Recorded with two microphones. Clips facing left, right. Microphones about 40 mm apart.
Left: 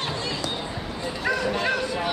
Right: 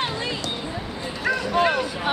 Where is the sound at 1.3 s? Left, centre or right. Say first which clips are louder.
Right 4 dB; centre.